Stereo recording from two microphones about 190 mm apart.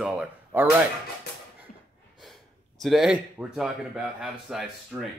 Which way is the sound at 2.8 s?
Centre (ahead or behind).